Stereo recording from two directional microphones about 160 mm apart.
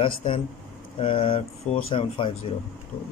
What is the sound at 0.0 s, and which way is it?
A man's voice, 35° left (ahead or behind).